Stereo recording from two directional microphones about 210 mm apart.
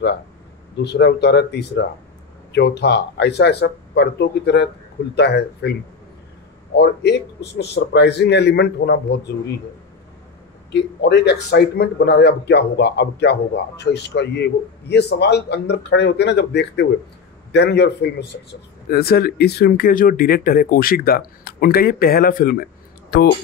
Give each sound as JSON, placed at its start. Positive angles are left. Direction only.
{"t": 0.7, "sound": "speech", "side_deg": 55}
{"t": 10.7, "sound": "speech", "side_deg": 55}